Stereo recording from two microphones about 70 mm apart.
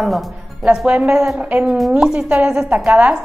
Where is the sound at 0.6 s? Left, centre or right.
Centre.